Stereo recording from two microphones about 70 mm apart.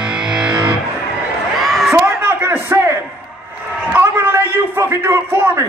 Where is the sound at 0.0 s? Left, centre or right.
Centre.